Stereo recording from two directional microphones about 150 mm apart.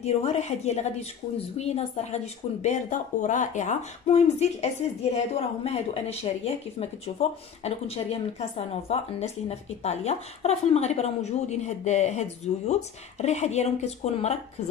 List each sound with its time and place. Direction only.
0.0 s speech: 45° left (ahead or behind)